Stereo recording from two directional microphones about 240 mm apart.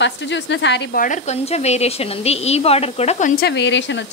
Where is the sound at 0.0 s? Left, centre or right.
Left.